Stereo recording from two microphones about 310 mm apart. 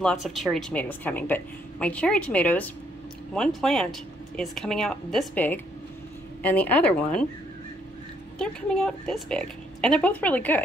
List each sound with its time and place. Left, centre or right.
0.0 s speech: centre
8.4 s speech: centre